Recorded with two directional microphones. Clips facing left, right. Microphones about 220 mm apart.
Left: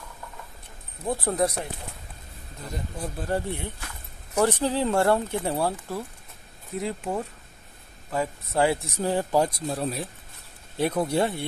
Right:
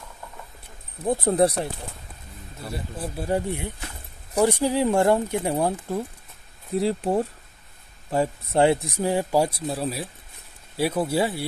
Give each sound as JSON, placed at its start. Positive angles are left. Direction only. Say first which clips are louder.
{"t": 1.0, "sound": "speech", "louder": "right 5 dB", "side_deg": -20}
{"t": 2.7, "sound": "speech", "louder": "right 1 dB", "side_deg": -10}
{"t": 6.8, "sound": "speech", "louder": "right 6 dB", "side_deg": -35}
{"t": 8.8, "sound": "speech", "louder": "right 2 dB", "side_deg": -10}